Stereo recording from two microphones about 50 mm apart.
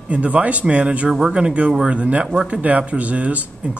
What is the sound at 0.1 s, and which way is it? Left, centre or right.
Speech, right.